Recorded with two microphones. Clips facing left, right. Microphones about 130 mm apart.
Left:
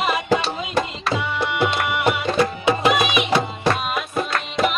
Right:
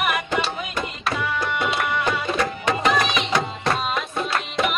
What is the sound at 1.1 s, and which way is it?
Tabla, 25° left (ahead or behind).